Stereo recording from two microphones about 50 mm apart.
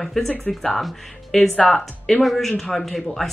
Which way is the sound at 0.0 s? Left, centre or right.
Centre.